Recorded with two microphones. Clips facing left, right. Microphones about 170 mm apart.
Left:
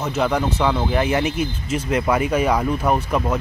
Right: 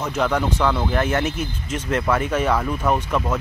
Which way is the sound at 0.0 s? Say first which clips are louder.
Left 1 dB; 10° left (ahead or behind).